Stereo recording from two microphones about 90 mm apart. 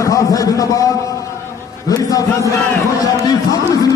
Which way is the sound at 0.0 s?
40° left (ahead or behind).